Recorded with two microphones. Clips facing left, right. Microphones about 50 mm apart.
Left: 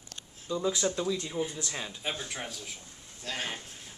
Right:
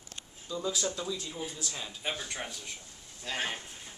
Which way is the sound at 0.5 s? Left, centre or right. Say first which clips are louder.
Left 4 dB; left.